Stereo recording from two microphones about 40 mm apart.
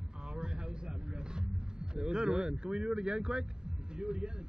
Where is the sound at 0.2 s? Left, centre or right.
Right.